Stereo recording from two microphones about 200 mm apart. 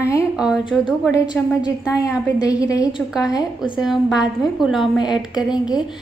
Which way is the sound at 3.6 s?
Centre (ahead or behind).